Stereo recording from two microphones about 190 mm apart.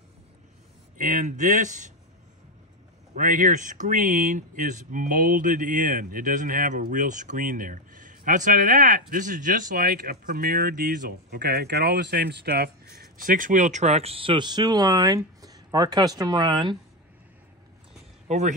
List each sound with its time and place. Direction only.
0.9 s speech: 40° right (ahead or behind)
3.2 s speech: 45° right (ahead or behind); by 16.7 s 20° right (ahead or behind)